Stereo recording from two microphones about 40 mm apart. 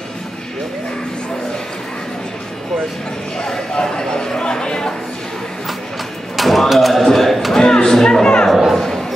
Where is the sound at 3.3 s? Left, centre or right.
Centre.